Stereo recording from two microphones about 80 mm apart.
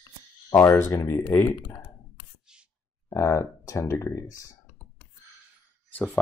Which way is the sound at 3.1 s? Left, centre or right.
Left.